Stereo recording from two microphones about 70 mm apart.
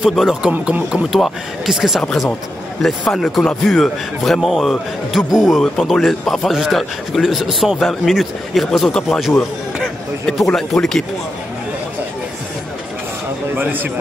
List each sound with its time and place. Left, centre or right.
0.1 s a man's voice: centre
0.4 s speech: centre
1.1 s a man's voice: centre
5.6 s a man's voice: centre
13.6 s a man's voice: right